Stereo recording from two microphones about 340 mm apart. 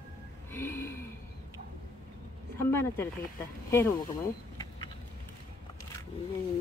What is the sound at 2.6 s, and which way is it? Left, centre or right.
Speech, centre.